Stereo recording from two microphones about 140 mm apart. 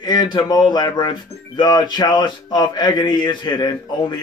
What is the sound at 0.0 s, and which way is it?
A man's voice, 30° left (ahead or behind).